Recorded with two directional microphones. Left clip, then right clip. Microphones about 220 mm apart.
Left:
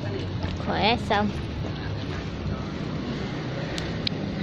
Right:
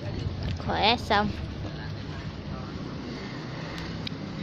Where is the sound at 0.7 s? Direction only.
10° right (ahead or behind).